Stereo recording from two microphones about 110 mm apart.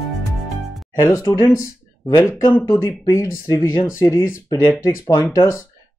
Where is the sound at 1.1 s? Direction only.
30° left (ahead or behind).